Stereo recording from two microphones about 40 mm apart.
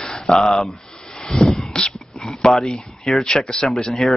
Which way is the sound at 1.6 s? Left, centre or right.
Centre.